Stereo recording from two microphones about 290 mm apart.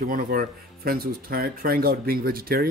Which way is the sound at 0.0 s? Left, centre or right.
Right.